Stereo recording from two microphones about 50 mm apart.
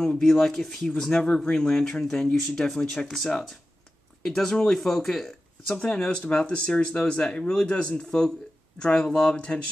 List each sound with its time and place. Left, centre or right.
0.0 s speech: centre
3.1 s speech: centre
5.9 s speech: left